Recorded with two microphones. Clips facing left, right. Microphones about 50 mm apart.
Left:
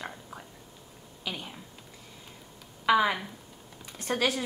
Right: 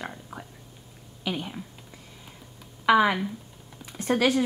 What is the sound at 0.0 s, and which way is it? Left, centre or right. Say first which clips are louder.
Whispering: right 3 dB; centre.